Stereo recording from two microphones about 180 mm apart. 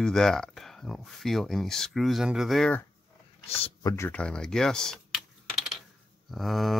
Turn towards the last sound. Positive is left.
turn(degrees=0)  # may be behind; listen again after turning